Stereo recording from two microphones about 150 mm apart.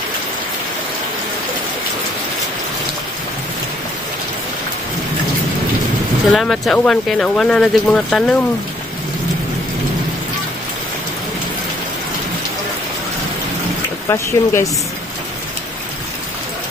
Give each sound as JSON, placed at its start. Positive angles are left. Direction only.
{"t": 6.3, "sound": "speech", "side_deg": 0}
{"t": 14.0, "sound": "speech", "side_deg": 20}